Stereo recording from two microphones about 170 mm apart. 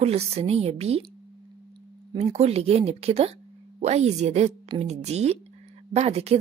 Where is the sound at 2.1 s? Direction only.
40° right (ahead or behind).